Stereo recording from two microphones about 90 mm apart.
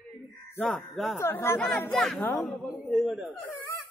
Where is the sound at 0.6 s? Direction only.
Centre (ahead or behind).